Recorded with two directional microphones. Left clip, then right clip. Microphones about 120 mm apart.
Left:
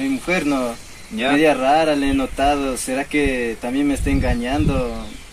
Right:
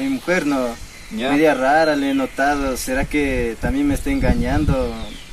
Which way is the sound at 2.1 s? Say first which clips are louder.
Even; 25° left (ahead or behind).